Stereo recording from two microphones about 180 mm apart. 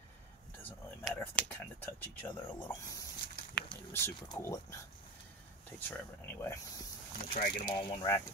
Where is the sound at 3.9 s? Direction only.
15° left (ahead or behind).